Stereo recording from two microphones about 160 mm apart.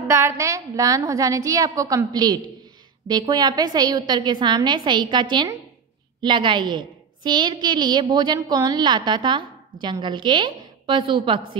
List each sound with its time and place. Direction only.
0.1 s a woman's voice: 15° right (ahead or behind)